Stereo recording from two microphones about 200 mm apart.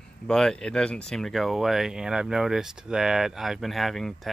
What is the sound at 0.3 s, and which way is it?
Speech, 5° left (ahead or behind).